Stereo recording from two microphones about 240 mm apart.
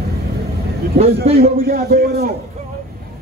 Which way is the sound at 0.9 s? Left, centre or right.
Right.